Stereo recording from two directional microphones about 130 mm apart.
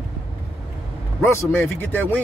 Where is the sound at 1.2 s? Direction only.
20° left (ahead or behind).